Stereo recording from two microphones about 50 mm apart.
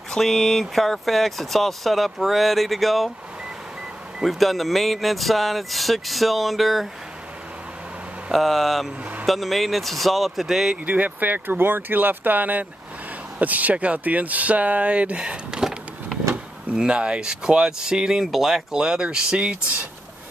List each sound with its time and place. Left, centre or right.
0.1 s speech: centre
4.2 s speech: centre
8.3 s speech: centre
10.9 s speech: right; by 15.7 s centre
16.7 s speech: right